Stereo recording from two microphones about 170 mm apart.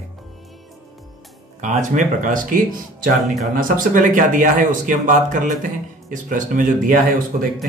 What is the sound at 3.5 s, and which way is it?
Speech, 55° right (ahead or behind).